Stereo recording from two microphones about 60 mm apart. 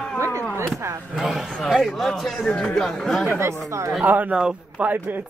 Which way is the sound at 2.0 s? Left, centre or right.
Centre.